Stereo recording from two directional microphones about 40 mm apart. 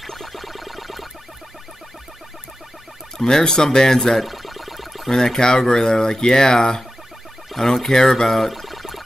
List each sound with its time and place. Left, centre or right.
0.0 s music: centre
3.2 s speech: centre
4.3 s a sound: centre
5.1 s speech: centre